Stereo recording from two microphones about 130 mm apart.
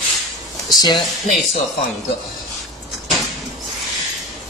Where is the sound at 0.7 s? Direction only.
35° left (ahead or behind).